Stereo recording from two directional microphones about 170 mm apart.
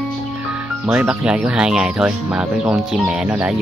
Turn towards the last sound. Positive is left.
turn(degrees=-5)  # may be behind; listen again after turning